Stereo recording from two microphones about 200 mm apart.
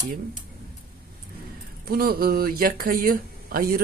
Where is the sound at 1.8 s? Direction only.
50° right (ahead or behind).